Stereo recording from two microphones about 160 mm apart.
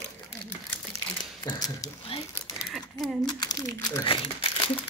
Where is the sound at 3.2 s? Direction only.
25° left (ahead or behind).